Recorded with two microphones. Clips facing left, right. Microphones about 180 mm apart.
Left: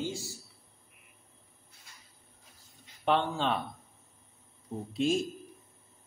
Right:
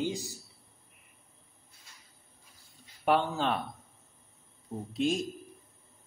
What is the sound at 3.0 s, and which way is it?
Speech, 5° right (ahead or behind).